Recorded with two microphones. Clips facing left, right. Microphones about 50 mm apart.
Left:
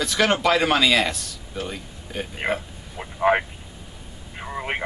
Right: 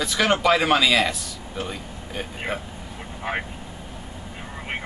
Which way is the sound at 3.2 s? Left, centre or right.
Centre.